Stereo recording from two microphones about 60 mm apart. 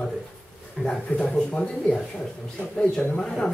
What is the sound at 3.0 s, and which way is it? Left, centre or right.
Speech, left.